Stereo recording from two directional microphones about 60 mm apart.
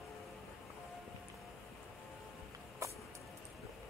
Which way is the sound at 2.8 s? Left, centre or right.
Right.